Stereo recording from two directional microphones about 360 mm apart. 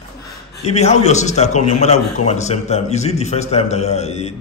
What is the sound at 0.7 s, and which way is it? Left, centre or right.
A man's voice, centre.